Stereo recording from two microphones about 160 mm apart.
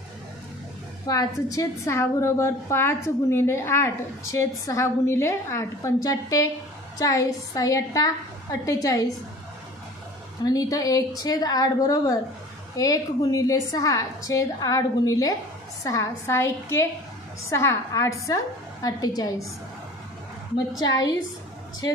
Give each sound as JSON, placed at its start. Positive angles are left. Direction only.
{"t": 1.0, "sound": "a woman's voice", "side_deg": 20}
{"t": 10.4, "sound": "a woman's voice", "side_deg": 20}
{"t": 20.8, "sound": "a woman's voice", "side_deg": 25}